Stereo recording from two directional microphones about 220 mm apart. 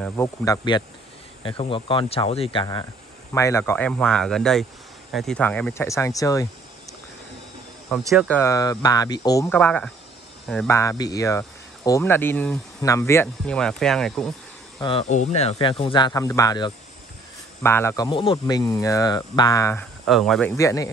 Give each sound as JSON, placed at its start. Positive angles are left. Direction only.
{"t": 0.0, "sound": "speech", "side_deg": 15}
{"t": 8.1, "sound": "speech", "side_deg": 0}
{"t": 8.4, "sound": "speech", "side_deg": 15}
{"t": 14.8, "sound": "speech", "side_deg": 25}
{"t": 20.1, "sound": "speech", "side_deg": 0}
{"t": 20.5, "sound": "speech", "side_deg": 15}